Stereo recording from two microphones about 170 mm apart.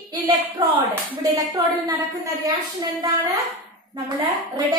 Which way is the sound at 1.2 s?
20° right (ahead or behind).